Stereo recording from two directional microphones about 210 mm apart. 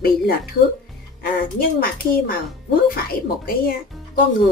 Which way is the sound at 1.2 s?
45° left (ahead or behind).